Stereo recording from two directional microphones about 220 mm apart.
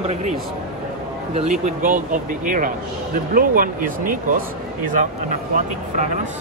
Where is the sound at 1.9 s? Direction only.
40° right (ahead or behind).